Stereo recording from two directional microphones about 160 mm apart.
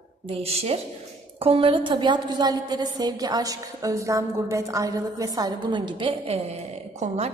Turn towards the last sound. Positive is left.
turn(degrees=-50)  # may be behind; listen again after turning